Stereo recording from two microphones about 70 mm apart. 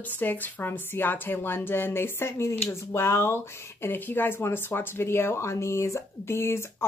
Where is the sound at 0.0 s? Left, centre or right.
Left.